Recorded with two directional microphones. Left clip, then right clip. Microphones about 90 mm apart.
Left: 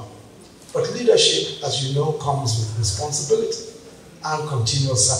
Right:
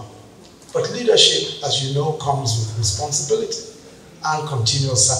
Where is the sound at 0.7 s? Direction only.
30° right (ahead or behind).